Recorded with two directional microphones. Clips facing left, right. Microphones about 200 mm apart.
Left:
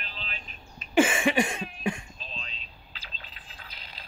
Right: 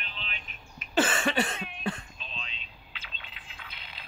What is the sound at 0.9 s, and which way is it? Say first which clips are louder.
Cough: left 4 dB; 10° left (ahead or behind).